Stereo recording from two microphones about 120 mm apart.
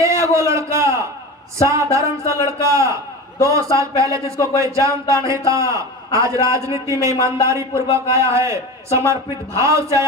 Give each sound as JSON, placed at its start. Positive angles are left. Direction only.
{"t": 0.0, "sound": "a man's voice", "side_deg": -25}